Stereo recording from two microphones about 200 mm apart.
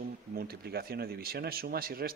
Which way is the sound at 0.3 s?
50° right (ahead or behind).